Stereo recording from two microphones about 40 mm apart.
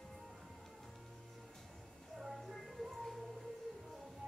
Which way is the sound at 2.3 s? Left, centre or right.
Centre.